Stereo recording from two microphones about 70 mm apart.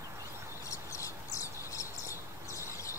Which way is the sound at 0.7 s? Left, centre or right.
Left.